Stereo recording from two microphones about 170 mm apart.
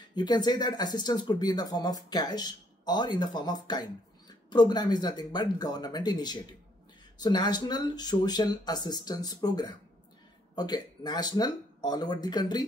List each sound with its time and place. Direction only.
0.1 s speech: 25° left (ahead or behind)